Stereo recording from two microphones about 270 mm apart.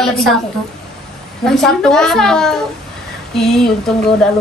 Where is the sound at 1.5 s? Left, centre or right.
Centre.